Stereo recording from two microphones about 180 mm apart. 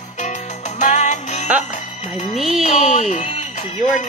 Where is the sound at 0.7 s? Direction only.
40° left (ahead or behind).